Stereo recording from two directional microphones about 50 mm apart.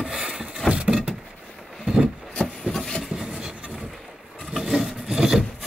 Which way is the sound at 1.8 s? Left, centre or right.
Centre.